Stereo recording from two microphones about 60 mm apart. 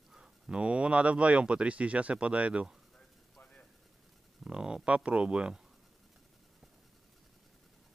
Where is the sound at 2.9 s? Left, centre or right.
Centre.